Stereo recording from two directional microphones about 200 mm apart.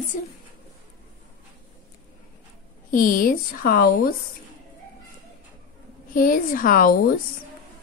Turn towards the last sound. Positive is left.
turn(degrees=45)  # may be behind; listen again after turning